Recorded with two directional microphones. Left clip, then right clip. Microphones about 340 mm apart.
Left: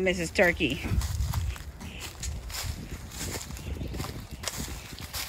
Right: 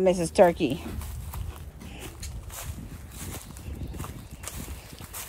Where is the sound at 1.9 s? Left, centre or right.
Centre.